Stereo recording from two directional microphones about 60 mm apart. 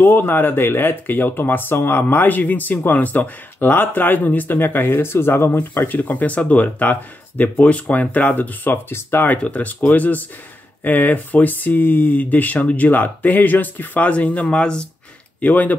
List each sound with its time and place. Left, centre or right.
0.0 s speech: left
9.4 s speech: left
15.4 s speech: left